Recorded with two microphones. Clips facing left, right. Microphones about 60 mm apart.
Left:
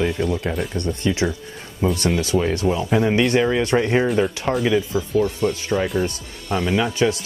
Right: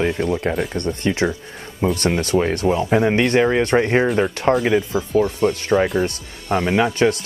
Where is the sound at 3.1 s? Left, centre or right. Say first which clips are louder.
Right 2 dB; right.